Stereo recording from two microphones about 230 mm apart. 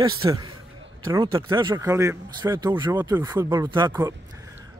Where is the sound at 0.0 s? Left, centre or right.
Right.